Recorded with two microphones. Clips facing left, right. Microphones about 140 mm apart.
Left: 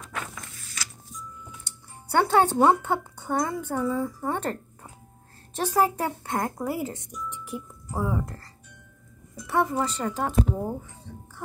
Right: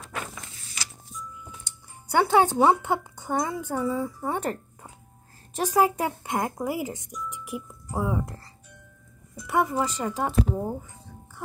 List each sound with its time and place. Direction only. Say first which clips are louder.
0.1 s a sound: right 1 dB; 10° right (ahead or behind)
2.0 s speech: right 1 dB; 10° right (ahead or behind)
9.5 s speech: even; 15° right (ahead or behind)